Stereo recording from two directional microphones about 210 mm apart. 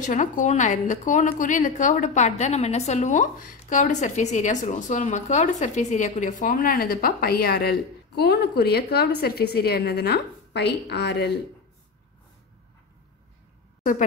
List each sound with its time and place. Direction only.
0.0 s a woman's voice: 35° left (ahead or behind)